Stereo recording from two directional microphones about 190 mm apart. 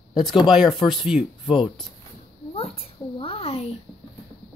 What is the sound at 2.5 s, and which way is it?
A child's voice, 30° left (ahead or behind).